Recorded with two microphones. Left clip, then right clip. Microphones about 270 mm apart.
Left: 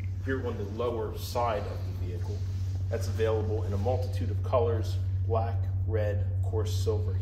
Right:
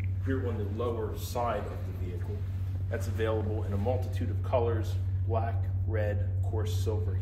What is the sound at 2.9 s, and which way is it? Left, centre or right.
A man's voice, left.